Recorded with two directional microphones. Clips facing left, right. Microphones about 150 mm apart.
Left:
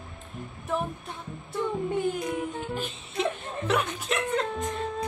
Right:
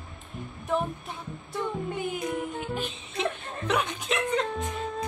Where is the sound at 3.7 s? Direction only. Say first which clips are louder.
Even; centre (ahead or behind).